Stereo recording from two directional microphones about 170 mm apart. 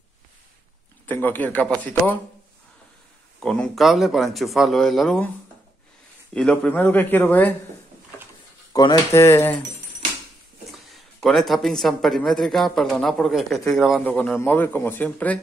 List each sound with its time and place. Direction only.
1.0 s speech: 10° left (ahead or behind)
3.3 s speech: 5° left (ahead or behind)
6.3 s speech: 5° left (ahead or behind)
8.7 s speech: 20° left (ahead or behind)
10.7 s speech: centre (ahead or behind)
14.0 s speech: 10° left (ahead or behind)